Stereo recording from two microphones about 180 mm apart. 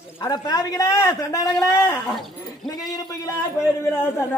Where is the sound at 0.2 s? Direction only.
20° left (ahead or behind).